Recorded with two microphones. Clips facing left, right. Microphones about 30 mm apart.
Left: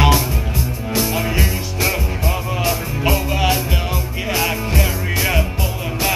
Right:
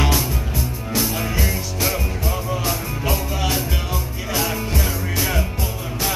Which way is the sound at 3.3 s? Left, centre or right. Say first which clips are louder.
Left 5 dB; left.